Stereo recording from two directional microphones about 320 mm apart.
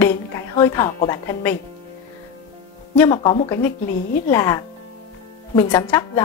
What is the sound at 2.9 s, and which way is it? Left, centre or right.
A woman's voice, centre.